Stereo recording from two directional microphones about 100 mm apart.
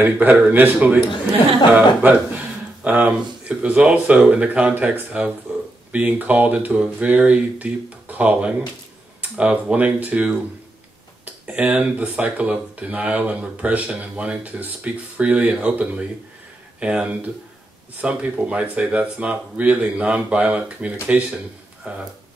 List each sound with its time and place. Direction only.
0.0 s speech: 20° right (ahead or behind)
11.4 s speech: 15° right (ahead or behind)